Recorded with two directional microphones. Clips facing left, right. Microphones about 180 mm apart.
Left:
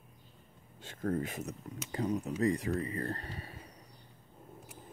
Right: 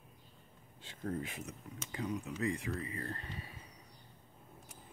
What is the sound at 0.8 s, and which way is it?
Speech, 50° left (ahead or behind).